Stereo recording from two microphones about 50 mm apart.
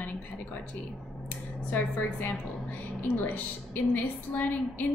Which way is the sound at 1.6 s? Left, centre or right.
Left.